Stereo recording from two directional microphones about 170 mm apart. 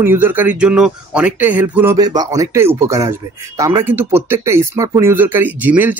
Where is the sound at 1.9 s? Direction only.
25° right (ahead or behind).